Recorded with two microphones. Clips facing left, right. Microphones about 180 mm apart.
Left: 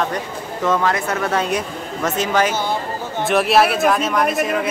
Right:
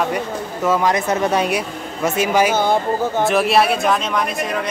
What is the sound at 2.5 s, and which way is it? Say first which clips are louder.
Speech: right 5 dB; 50° right (ahead or behind).